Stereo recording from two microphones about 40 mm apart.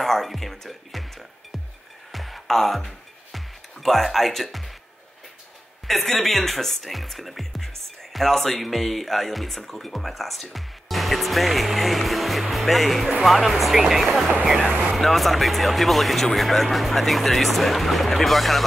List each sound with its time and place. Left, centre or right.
0.0 s music: centre
5.9 s speech: centre
14.7 s speech: right
15.0 s speech: centre